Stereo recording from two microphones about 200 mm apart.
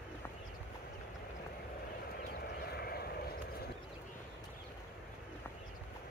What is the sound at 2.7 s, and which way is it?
Vehicle, 50° left (ahead or behind).